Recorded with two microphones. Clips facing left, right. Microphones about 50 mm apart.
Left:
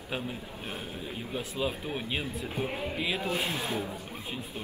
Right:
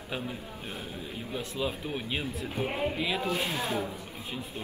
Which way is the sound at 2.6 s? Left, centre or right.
Right.